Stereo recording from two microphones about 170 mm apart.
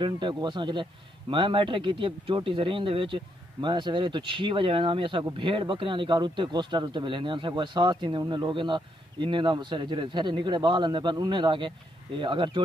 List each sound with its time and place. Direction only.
0.0 s speech: 25° right (ahead or behind)